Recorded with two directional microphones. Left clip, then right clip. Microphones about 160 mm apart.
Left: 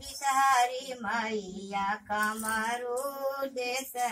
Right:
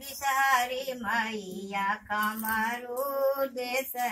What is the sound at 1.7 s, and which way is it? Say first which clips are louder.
Mantra: right 1 dB; 10° left (ahead or behind).